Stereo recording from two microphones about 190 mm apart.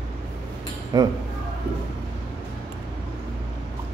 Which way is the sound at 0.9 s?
20° right (ahead or behind).